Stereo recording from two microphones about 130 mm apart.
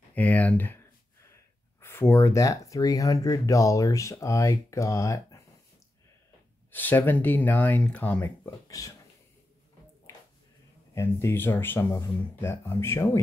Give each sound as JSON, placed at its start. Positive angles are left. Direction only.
{"t": 0.1, "sound": "speech", "side_deg": 10}
{"t": 6.7, "sound": "speech", "side_deg": 15}
{"t": 8.6, "sound": "speech", "side_deg": 25}
{"t": 11.0, "sound": "speech", "side_deg": 20}